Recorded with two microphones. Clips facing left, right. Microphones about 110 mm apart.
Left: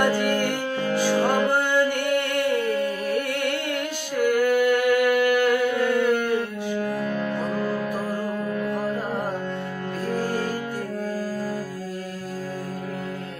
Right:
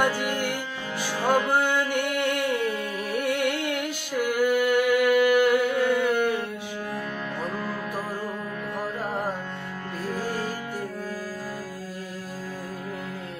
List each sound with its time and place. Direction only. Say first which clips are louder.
0.8 s music: left 4 dB; 45° left (ahead or behind)
1.5 s music: left 2 dB; 10° right (ahead or behind)
4.2 s a sound: left 3 dB; 10° right (ahead or behind)